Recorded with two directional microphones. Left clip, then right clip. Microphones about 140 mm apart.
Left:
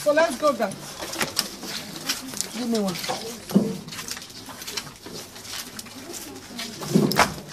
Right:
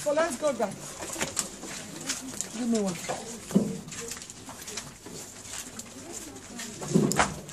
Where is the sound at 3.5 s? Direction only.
50° left (ahead or behind).